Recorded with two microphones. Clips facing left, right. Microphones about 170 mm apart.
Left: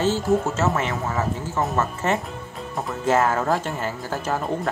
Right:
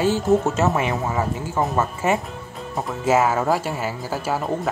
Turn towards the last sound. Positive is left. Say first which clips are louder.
# right 1 dB
turn(degrees=-10)  # may be behind; listen again after turning